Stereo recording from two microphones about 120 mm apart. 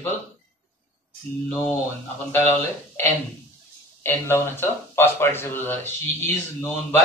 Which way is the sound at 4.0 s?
20° left (ahead or behind).